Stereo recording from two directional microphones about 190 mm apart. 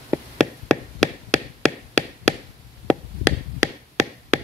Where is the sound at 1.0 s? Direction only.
5° left (ahead or behind).